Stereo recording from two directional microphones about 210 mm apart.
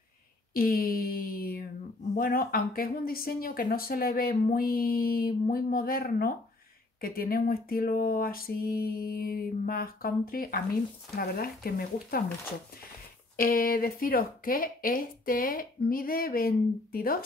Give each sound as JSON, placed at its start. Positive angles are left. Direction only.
{"t": 0.5, "sound": "a sound", "side_deg": 45}
{"t": 2.1, "sound": "speech", "side_deg": 45}
{"t": 13.4, "sound": "speech", "side_deg": 40}